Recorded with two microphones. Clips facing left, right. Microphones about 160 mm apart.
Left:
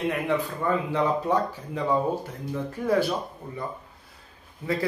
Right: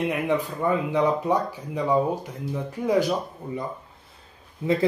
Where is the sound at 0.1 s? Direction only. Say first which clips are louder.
Right 2 dB; 15° right (ahead or behind).